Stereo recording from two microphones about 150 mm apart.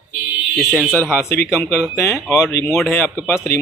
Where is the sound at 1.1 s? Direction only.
15° left (ahead or behind).